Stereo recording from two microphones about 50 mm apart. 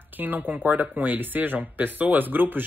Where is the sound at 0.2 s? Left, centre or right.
Right.